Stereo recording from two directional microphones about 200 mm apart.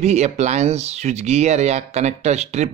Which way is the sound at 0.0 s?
35° right (ahead or behind).